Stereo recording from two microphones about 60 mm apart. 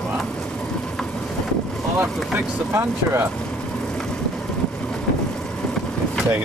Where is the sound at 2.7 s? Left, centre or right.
Right.